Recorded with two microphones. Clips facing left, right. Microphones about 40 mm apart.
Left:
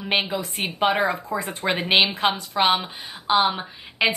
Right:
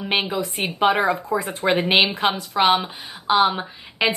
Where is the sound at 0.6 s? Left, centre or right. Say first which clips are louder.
Right 2 dB; centre.